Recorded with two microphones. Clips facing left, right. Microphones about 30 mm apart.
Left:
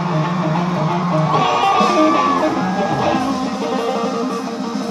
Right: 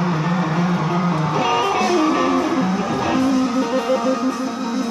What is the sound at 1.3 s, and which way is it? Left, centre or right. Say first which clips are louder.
Music: left 4 dB; left.